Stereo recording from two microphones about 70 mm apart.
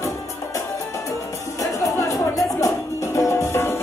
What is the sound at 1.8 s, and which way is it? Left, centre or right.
Music, left.